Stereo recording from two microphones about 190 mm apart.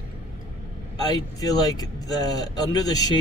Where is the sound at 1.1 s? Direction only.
20° left (ahead or behind).